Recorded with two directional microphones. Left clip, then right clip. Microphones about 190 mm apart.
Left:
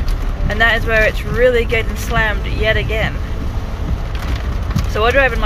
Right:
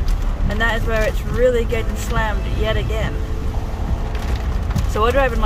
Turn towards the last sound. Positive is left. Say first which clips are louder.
# left 4 dB
turn(degrees=-20)  # may be behind; listen again after turning